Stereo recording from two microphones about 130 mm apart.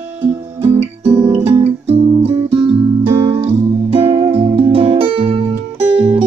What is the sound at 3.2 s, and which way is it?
Music, 20° right (ahead or behind).